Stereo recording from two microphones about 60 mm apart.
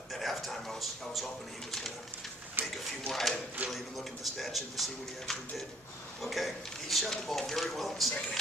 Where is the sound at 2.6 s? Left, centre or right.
Right.